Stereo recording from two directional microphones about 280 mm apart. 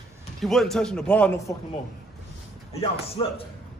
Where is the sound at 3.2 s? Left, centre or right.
Centre.